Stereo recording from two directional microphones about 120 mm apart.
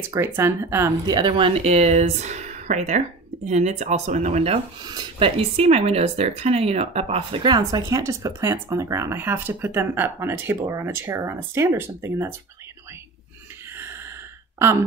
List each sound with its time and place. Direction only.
0.1 s speech: 25° right (ahead or behind)
1.0 s speech: 40° right (ahead or behind); by 4.6 s 70° right (ahead or behind)
5.2 s speech: 55° right (ahead or behind)
7.4 s speech: 35° right (ahead or behind)